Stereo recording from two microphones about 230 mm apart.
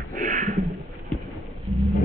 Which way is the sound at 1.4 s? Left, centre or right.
Centre.